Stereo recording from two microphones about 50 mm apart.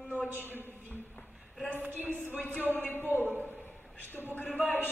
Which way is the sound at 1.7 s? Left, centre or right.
Right.